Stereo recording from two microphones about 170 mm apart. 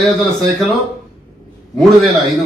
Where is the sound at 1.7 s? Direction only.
Centre (ahead or behind).